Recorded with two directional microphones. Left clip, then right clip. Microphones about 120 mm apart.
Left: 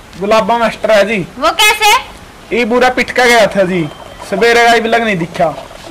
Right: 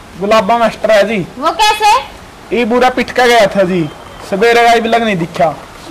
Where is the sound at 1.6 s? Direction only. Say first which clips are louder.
Even; 40° left (ahead or behind).